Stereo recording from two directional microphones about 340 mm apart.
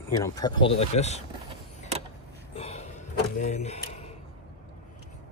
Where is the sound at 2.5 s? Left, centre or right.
Centre.